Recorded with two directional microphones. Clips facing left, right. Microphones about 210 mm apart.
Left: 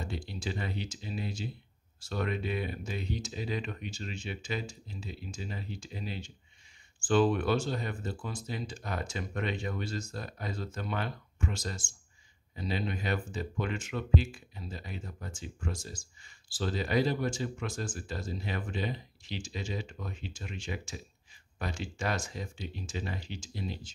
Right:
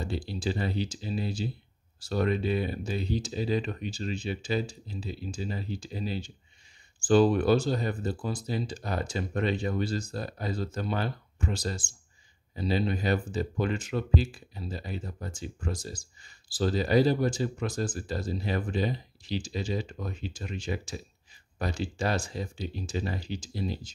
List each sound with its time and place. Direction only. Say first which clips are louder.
0.0 s speech: right 6 dB; 35° right (ahead or behind)